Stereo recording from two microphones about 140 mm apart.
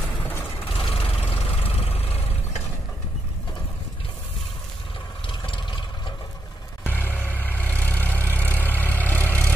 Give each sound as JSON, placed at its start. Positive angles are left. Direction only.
{"t": 0.7, "sound": "vehicle", "side_deg": 45}
{"t": 5.5, "sound": "vehicle", "side_deg": 35}
{"t": 6.9, "sound": "vehicle", "side_deg": 10}